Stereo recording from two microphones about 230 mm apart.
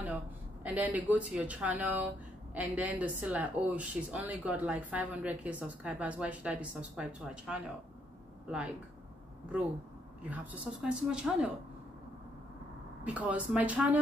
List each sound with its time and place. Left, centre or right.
0.7 s speech: centre
10.3 s speech: centre
13.0 s speech: centre